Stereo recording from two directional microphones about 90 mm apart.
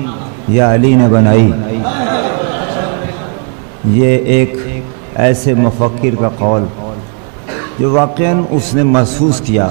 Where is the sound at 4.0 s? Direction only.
15° right (ahead or behind).